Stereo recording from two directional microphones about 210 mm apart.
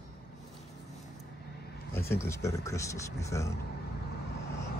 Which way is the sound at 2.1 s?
15° left (ahead or behind).